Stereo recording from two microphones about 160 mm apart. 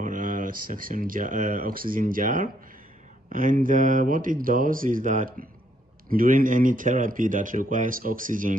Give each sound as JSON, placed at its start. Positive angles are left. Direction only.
{"t": 0.0, "sound": "speech", "side_deg": -55}